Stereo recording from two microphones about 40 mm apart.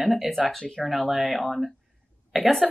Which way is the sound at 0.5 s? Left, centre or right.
Centre.